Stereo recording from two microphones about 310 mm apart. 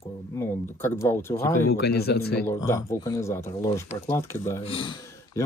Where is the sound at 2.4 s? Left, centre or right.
Centre.